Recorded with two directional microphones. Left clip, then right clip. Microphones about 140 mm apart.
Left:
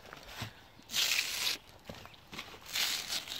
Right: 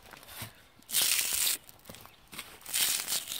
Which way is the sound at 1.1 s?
20° right (ahead or behind).